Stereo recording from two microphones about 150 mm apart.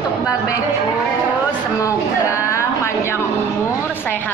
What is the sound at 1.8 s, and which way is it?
Speech, 20° left (ahead or behind).